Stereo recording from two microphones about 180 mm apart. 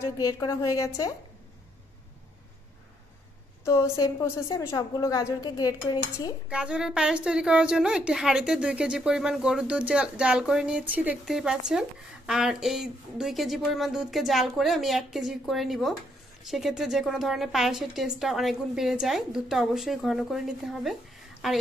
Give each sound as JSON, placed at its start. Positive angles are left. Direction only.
{"t": 0.0, "sound": "a woman's voice", "side_deg": 20}
{"t": 3.9, "sound": "a woman's voice", "side_deg": 20}
{"t": 6.5, "sound": "a woman's voice", "side_deg": -5}